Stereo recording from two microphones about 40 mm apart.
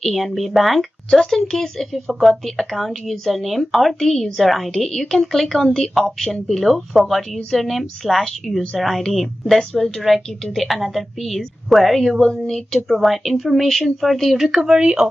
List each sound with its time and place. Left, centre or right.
0.0 s speech: centre
14.6 s speech: right